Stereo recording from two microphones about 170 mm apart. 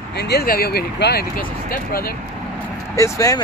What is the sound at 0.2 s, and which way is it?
Speech, 70° left (ahead or behind).